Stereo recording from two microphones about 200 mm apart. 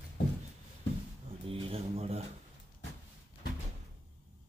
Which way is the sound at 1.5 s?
30° right (ahead or behind).